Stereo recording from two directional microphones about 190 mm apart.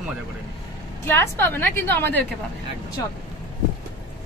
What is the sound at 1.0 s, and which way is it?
A woman's voice, 10° left (ahead or behind).